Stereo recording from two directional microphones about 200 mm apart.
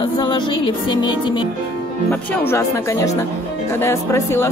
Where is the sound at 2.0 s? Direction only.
10° left (ahead or behind).